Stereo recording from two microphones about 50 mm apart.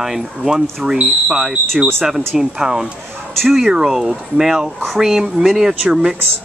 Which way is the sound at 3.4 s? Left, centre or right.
Centre.